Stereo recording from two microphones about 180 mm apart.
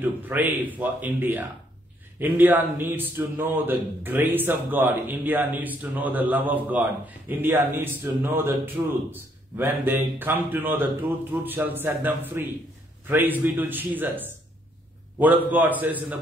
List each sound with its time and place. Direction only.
0.0 s a man's voice: 10° right (ahead or behind)